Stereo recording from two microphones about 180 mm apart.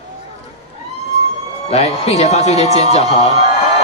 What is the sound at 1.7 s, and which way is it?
A man's voice, 35° left (ahead or behind).